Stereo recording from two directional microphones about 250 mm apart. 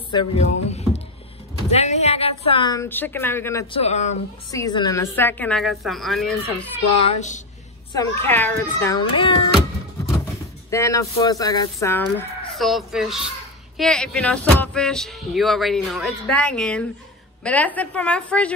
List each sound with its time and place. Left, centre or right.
0.1 s speech: centre
0.7 s a sound: left
1.7 s speech: left; by 3.6 s centre
3.7 s a child's voice: left
4.5 s speech: centre
7.1 s a child's voice: left
7.9 s a child's voice: centre
10.7 s speech: centre